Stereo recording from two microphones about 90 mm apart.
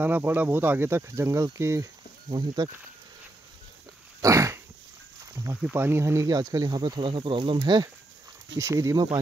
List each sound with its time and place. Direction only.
0.0 s speech: 20° right (ahead or behind)
2.2 s speech: 55° right (ahead or behind)
4.2 s dog: 35° right (ahead or behind)
5.3 s snake: 30° right (ahead or behind)
5.6 s speech: 20° right (ahead or behind); by 7.1 s 55° right (ahead or behind)
7.1 s speech: 65° right (ahead or behind)
8.5 s speech: 35° right (ahead or behind)